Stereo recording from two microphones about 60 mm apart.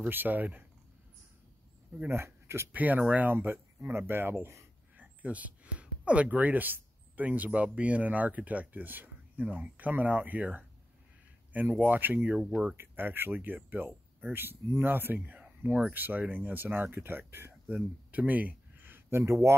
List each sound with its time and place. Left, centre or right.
0.0 s speech: right
2.0 s speech: right
2.7 s speech: right
4.9 s speech: right
11.8 s speech: right
12.7 s speech: right
17.6 s speech: right